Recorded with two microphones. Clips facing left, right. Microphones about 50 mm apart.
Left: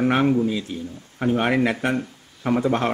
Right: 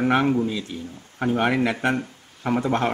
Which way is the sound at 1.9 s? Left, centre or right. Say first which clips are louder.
Left 1 dB; centre.